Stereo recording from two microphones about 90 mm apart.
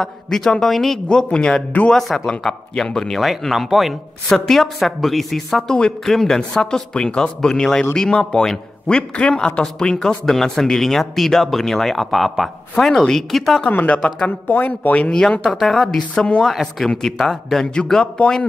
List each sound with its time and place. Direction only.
0.0 s a man's voice: 5° left (ahead or behind)
13.7 s a man's voice: 15° left (ahead or behind)